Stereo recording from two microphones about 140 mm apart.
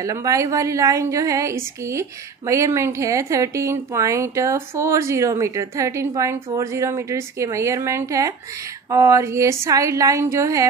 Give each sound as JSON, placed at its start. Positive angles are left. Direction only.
{"t": 0.0, "sound": "a woman's voice", "side_deg": -25}